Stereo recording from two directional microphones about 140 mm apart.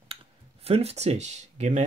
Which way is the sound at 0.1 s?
45° right (ahead or behind).